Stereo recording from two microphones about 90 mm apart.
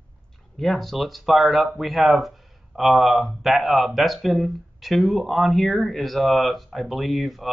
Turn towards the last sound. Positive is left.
turn(degrees=0)  # may be behind; listen again after turning